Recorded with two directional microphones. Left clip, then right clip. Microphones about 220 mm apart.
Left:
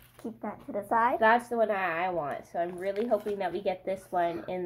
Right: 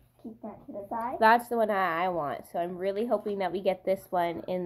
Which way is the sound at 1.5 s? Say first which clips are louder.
Right 1 dB; 35° right (ahead or behind).